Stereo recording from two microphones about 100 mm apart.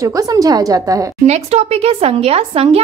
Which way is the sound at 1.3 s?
90° right.